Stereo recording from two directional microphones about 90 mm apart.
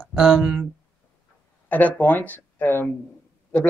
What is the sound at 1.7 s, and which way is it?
Speech, 20° left (ahead or behind).